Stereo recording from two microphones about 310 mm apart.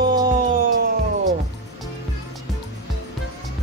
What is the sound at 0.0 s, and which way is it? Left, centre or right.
Music, centre.